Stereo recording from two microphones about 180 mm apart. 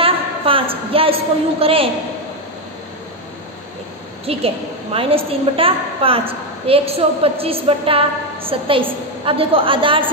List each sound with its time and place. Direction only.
0.0 s a woman's voice: 30° right (ahead or behind)
4.3 s a woman's voice: 35° right (ahead or behind)